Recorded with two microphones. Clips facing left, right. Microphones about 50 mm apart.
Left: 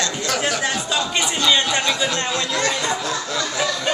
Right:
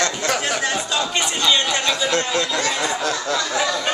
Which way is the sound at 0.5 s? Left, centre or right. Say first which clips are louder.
Even; centre.